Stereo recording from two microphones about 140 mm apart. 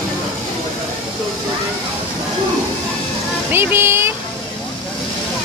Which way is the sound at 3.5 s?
15° right (ahead or behind).